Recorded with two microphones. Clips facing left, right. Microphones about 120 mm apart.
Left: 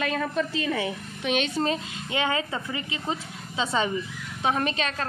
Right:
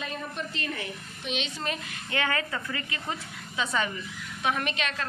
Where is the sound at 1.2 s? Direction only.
55° left (ahead or behind).